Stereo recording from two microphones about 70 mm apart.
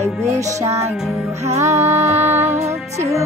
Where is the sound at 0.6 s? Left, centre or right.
Right.